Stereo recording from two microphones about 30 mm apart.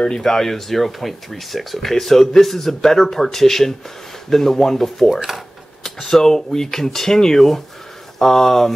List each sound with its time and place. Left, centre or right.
0.2 s speech: centre
5.1 s speech: centre
5.9 s speech: centre